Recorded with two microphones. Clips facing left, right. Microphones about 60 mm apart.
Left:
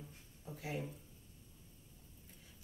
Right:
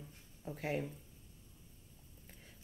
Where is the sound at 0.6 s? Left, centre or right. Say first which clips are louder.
Right 5 dB; right.